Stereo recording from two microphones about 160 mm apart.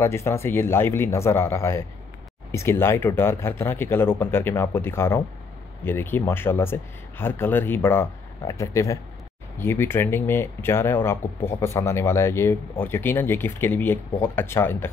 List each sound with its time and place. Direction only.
0.0 s speech: 15° left (ahead or behind)